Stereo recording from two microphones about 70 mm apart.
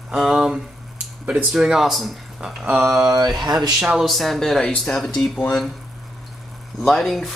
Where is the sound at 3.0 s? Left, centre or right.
Right.